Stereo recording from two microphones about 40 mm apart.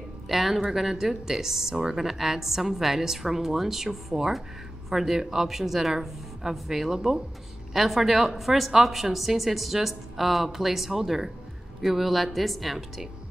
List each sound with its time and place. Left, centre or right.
0.3 s a woman's voice: centre